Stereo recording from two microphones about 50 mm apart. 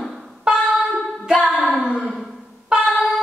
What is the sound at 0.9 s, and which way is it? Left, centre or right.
Music, centre.